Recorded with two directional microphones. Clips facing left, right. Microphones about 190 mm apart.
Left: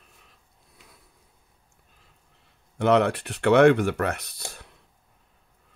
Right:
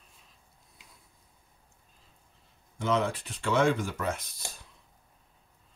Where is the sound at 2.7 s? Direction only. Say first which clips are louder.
Left 8 dB; 65° left (ahead or behind).